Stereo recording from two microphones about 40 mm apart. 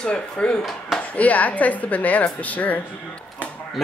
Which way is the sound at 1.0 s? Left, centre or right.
Left.